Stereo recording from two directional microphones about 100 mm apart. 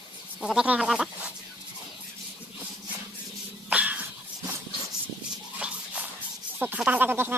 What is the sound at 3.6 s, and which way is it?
Dog, 15° right (ahead or behind).